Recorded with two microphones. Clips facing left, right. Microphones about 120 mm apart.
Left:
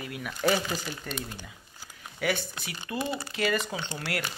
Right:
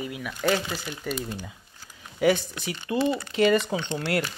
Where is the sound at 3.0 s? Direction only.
15° left (ahead or behind).